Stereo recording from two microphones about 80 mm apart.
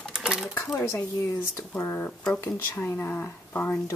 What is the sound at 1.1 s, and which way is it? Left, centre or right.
Speech, left.